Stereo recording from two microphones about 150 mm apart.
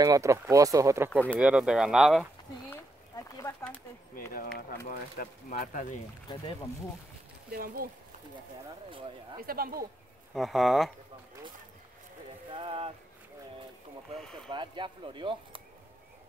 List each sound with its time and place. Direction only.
0.0 s speech: 20° right (ahead or behind)
1.1 s speech: 10° left (ahead or behind)
1.4 s speech: 5° right (ahead or behind)
2.7 s a sound: 20° left (ahead or behind)
4.1 s speech: 75° left (ahead or behind)
4.8 s speech: 85° left; by 5.9 s 65° left (ahead or behind)
7.5 s speech: 75° right (ahead or behind)
9.5 s speech: 80° right
10.3 s speech: centre (ahead or behind)
12.4 s speech: 35° right (ahead or behind)
14.5 s speech: 30° right (ahead or behind)